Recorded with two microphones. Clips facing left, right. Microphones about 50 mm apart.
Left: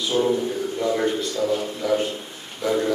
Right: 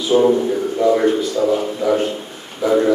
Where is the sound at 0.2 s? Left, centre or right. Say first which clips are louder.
Right 7 dB; right.